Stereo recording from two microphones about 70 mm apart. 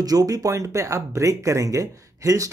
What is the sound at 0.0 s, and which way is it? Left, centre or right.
Speech, right.